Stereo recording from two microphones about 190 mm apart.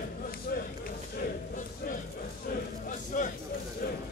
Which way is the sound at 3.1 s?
45° left (ahead or behind).